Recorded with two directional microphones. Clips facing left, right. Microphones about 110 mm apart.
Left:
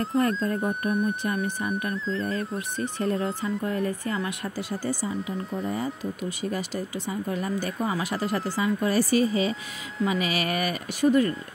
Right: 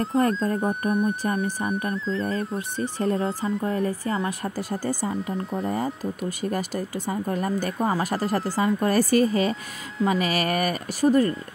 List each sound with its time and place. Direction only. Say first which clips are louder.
0.2 s speech: right 3 dB; 35° right (ahead or behind)
3.0 s speech: right 2 dB; 35° right (ahead or behind)